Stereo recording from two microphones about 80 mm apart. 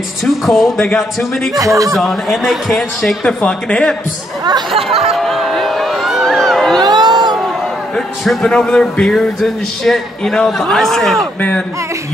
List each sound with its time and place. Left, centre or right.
0.2 s a man's voice: centre
1.6 s a man's voice: right
2.0 s a man's voice: centre
4.8 s music: centre
6.8 s a sound: right
7.9 s a man's voice: centre